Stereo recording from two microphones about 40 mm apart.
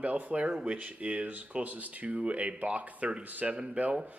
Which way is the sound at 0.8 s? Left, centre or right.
Right.